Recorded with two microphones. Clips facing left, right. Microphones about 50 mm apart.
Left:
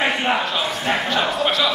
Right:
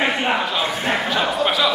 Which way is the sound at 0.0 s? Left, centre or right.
Centre.